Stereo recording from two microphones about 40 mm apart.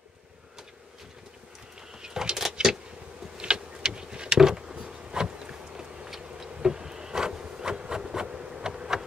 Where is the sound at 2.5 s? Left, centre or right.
Centre.